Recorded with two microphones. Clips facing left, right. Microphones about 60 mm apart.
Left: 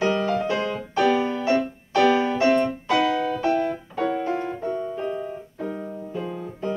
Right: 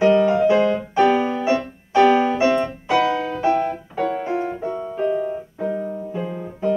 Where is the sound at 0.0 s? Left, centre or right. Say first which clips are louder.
Right 7 dB; centre.